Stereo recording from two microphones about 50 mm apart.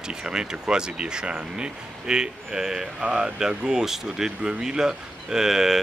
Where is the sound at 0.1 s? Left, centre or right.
Centre.